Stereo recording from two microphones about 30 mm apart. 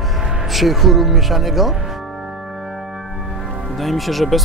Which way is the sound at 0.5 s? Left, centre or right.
Centre.